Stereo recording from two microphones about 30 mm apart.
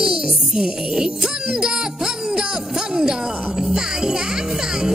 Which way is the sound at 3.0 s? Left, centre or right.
Centre.